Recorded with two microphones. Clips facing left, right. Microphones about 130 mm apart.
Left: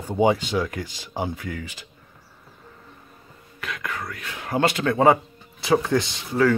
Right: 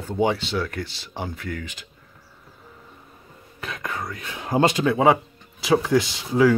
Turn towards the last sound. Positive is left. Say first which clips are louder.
# right 2 dB
turn(degrees=-5)  # may be behind; listen again after turning